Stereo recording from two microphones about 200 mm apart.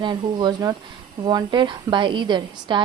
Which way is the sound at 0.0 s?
20° right (ahead or behind).